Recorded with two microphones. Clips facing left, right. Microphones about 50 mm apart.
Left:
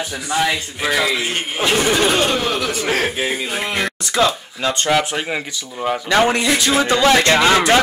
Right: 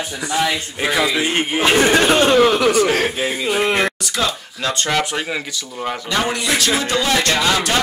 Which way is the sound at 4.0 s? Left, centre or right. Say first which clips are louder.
Left 4 dB; left.